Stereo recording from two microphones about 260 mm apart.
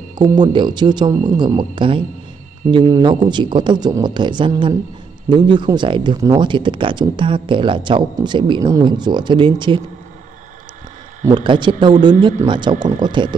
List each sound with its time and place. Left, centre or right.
0.2 s speech: centre
11.3 s speech: centre